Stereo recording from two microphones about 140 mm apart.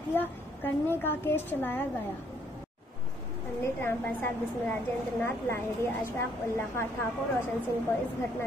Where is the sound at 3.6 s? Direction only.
15° left (ahead or behind).